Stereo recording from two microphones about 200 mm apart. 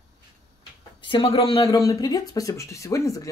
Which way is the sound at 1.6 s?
15° left (ahead or behind).